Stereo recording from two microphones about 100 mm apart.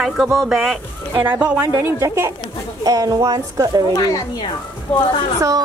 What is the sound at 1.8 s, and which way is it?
Speech, 25° right (ahead or behind).